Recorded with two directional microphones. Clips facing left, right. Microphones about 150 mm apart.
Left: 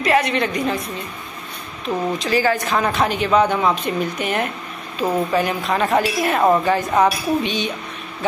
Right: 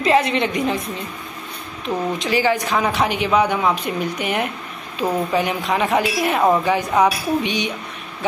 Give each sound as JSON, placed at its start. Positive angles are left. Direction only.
{"t": 0.0, "sound": "a woman's voice", "side_deg": -25}
{"t": 2.1, "sound": "speech", "side_deg": -15}